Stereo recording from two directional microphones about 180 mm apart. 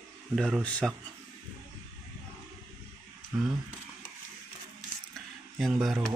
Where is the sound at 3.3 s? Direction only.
10° right (ahead or behind).